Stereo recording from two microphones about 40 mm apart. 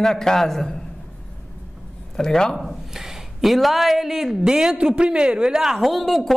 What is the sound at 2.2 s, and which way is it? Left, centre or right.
Speech, centre.